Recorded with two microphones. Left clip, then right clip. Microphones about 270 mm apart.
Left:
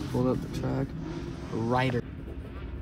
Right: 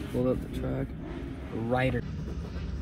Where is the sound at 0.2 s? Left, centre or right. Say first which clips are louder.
Right 1 dB; left.